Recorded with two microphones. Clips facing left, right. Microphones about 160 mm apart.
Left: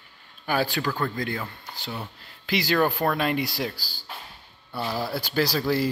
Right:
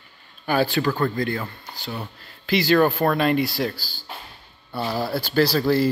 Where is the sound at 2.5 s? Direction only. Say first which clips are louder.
Right 5 dB; 15° left (ahead or behind).